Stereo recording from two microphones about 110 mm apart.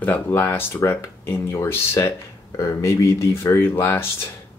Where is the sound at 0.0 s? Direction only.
20° left (ahead or behind).